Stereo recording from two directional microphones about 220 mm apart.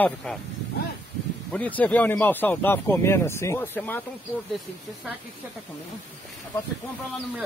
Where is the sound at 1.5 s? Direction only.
5° left (ahead or behind).